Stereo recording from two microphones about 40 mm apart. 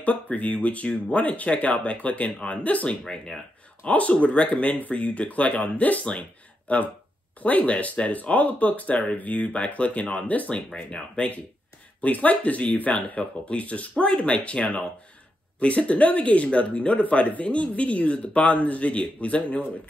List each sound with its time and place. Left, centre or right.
0.0 s speech: left